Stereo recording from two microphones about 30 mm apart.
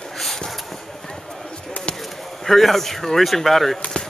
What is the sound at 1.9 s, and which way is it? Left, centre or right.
Speech, centre.